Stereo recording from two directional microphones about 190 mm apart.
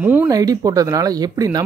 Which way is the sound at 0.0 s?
10° right (ahead or behind).